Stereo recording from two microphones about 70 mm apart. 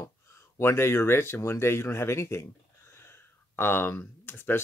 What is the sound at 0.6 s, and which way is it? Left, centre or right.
Speech, left.